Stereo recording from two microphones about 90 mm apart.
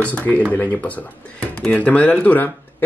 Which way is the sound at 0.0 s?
15° left (ahead or behind).